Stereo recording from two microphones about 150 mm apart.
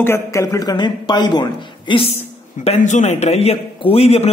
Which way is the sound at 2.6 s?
50° left (ahead or behind).